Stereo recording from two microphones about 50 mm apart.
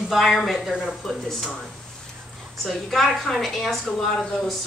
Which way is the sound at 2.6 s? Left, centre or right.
Centre.